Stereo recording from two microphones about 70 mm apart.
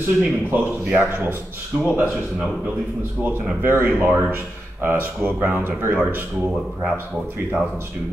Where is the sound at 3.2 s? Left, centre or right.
Right.